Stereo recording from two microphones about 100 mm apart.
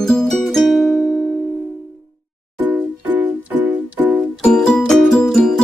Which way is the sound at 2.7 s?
15° right (ahead or behind).